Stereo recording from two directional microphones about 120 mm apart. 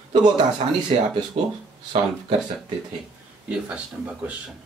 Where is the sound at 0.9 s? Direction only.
50° right (ahead or behind).